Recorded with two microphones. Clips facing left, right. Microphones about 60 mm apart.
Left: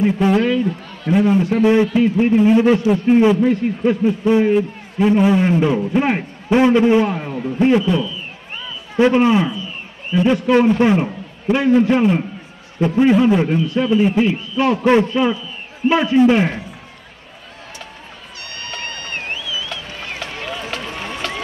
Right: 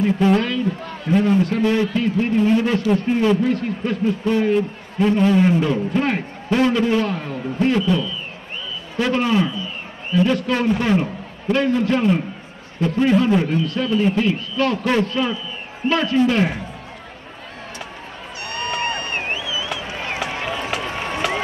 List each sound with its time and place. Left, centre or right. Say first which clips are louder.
0.0 s a man's voice: left 2 dB; centre
1.4 s a man's voice: left 4 dB; centre
18.5 s a sound: right 6 dB; right